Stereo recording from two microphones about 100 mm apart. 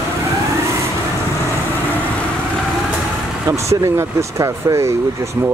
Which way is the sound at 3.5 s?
30° right (ahead or behind).